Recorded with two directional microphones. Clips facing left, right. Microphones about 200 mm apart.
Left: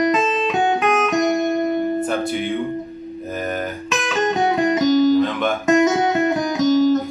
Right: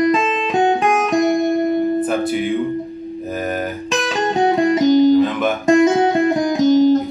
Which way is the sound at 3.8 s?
30° right (ahead or behind).